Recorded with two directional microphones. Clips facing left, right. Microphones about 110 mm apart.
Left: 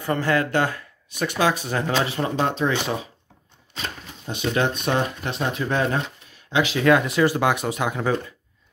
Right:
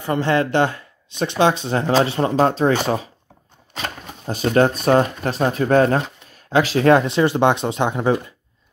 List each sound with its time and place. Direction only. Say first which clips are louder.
0.0 s speech: right 3 dB; 20° right (ahead or behind); by 3.0 s 40° right (ahead or behind)
4.3 s speech: right 6 dB; 40° right (ahead or behind)